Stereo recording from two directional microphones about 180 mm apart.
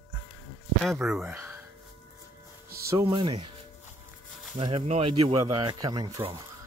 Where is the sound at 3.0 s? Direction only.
25° right (ahead or behind).